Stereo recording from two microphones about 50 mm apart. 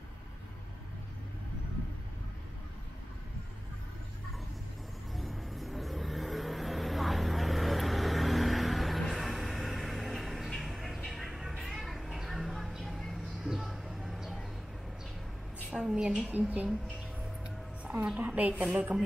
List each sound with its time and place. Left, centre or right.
5.1 s vehicle: centre
9.1 s music: centre
11.1 s vehicle: centre
11.6 s a sound: centre
13.4 s a sound: centre
15.9 s a woman's voice: centre
16.3 s speech: right
17.8 s a woman's voice: right